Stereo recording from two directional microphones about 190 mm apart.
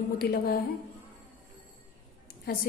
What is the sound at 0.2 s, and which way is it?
Speech, 50° left (ahead or behind).